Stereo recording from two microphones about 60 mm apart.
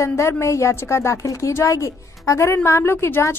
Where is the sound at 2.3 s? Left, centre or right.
Left.